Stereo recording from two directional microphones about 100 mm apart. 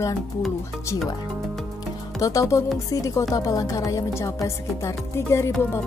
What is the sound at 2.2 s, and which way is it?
Music, 35° left (ahead or behind).